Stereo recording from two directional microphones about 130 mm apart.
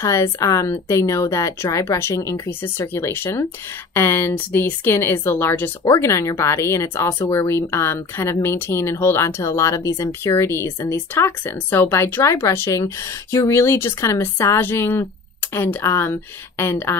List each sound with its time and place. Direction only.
0.0 s speech: 25° left (ahead or behind)